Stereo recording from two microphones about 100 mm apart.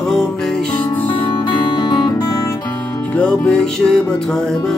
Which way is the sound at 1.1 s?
50° left (ahead or behind).